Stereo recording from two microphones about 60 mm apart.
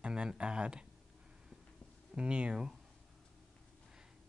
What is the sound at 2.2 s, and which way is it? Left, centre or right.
Speech, right.